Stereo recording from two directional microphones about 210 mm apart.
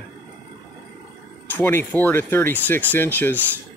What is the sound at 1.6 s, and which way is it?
Speech, 10° left (ahead or behind).